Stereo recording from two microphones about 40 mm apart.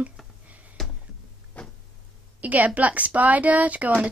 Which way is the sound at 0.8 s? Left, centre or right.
Centre.